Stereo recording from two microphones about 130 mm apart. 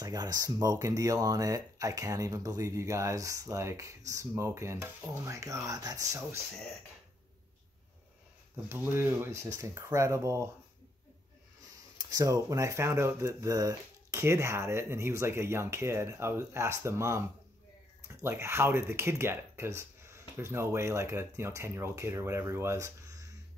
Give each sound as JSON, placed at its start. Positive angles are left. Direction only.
{"t": 0.0, "sound": "speech", "side_deg": -30}
{"t": 8.6, "sound": "speech", "side_deg": -20}
{"t": 12.1, "sound": "speech", "side_deg": -30}